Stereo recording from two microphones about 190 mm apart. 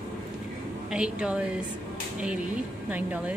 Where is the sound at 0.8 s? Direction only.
5° right (ahead or behind).